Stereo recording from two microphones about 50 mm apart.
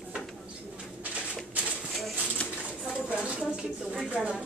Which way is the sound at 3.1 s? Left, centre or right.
Centre.